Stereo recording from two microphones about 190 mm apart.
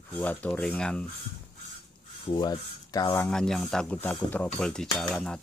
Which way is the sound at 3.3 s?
5° left (ahead or behind).